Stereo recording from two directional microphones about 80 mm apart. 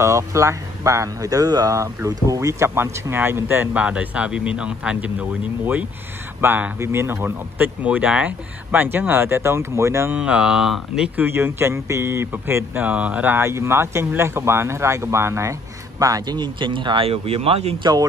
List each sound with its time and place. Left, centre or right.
0.0 s speech: right
2.7 s speech: right
3.7 s speech: centre
6.4 s speech: right
10.1 s speech: centre
11.1 s speech: right
13.4 s speech: right
16.0 s speech: right
17.8 s speech: right